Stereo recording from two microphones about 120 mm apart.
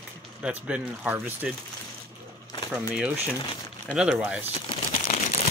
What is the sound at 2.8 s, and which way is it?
Speech, 15° right (ahead or behind).